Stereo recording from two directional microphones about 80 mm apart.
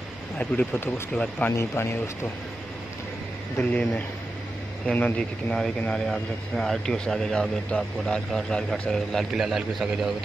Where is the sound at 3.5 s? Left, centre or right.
Centre.